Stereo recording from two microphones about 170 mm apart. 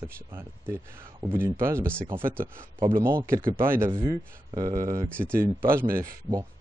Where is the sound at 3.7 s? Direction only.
15° right (ahead or behind).